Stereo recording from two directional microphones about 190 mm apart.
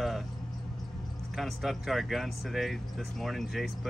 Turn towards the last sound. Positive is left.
turn(degrees=0)  # may be behind; listen again after turning